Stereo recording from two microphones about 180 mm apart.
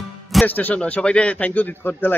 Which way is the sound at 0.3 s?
5° left (ahead or behind).